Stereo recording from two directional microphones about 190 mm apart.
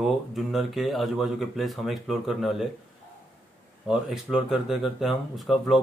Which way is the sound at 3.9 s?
Centre (ahead or behind).